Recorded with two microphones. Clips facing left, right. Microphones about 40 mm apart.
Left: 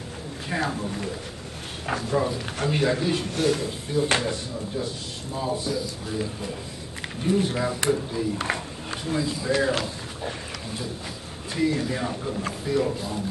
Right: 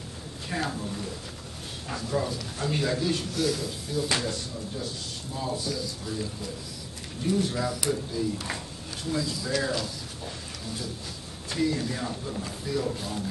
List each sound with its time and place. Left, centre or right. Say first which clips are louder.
0.5 s speech: left 4 dB; left
2.0 s speech: left 3 dB; left
3.3 s speech: left 4 dB; left
4.2 s speech: left 4 dB; left
6.0 s speech: left 4 dB; left
9.7 s speech: left 5 dB; left
11.5 s speech: left 3 dB; centre